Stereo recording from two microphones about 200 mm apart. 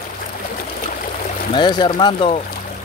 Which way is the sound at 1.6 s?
20° left (ahead or behind).